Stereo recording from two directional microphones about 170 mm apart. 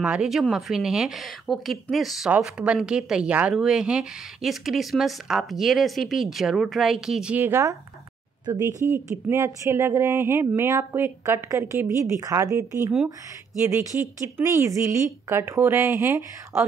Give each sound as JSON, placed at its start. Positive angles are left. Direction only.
{"t": 0.0, "sound": "speech", "side_deg": -5}